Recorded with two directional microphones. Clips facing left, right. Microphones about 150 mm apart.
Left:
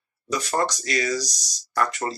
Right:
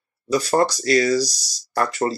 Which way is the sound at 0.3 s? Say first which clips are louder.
Right 6 dB; 35° right (ahead or behind).